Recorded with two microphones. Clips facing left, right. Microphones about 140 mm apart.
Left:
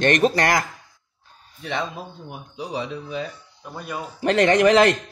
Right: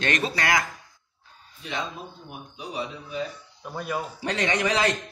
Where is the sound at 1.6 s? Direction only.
60° left (ahead or behind).